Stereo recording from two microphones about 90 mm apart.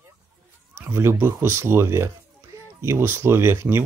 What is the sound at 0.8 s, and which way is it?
Speech, 30° right (ahead or behind).